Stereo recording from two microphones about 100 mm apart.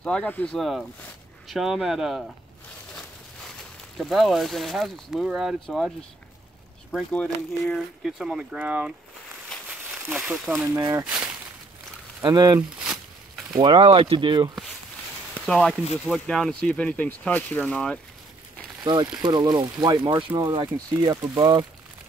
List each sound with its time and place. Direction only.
0.0 s speech: 15° left (ahead or behind)
0.6 s speech: centre (ahead or behind)
4.0 s speech: centre (ahead or behind)
6.9 s speech: 10° left (ahead or behind)
8.2 s speech: 10° right (ahead or behind)
10.0 s speech: 10° right (ahead or behind)
10.8 s speech: 40° right (ahead or behind)
12.2 s speech: 40° right (ahead or behind)
12.8 s a sound: 5° right (ahead or behind)
13.7 s speech: 70° right (ahead or behind); by 14.5 s 55° right (ahead or behind)
15.4 s speech: 10° left (ahead or behind)
19.2 s speech: 45° right (ahead or behind)
20.0 s speech: 60° right (ahead or behind)
20.3 s speech: 50° right (ahead or behind)